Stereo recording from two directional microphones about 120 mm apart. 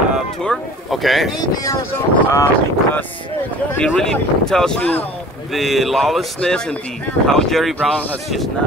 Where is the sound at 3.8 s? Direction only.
5° left (ahead or behind).